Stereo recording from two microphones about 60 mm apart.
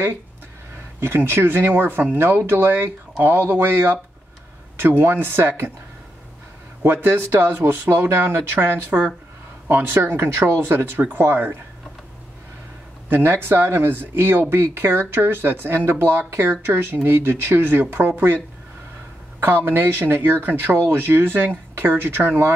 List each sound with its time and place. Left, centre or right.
1.0 s speech: right
6.8 s speech: right
13.1 s speech: right
19.4 s speech: right